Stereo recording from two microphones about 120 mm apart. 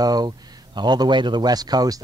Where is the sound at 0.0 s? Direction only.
35° right (ahead or behind).